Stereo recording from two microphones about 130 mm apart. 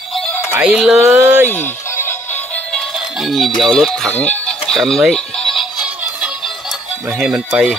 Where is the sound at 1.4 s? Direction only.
15° left (ahead or behind).